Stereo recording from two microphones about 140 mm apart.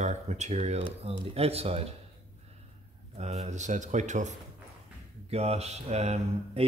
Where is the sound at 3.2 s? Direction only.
50° right (ahead or behind).